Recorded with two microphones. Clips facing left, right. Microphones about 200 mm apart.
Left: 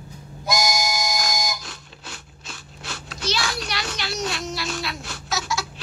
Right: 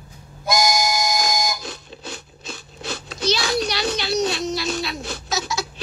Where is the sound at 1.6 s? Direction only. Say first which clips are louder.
Right 7 dB; 20° right (ahead or behind).